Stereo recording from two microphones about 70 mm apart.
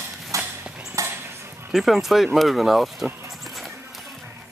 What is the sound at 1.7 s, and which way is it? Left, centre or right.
Speech, centre.